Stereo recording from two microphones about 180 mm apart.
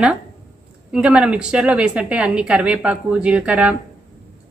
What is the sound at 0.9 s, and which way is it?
A woman's voice, 5° right (ahead or behind).